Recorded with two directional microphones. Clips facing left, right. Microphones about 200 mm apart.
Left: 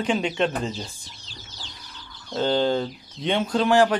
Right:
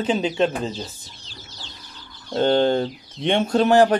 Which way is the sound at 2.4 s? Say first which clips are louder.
Right 4 dB; 55° right (ahead or behind).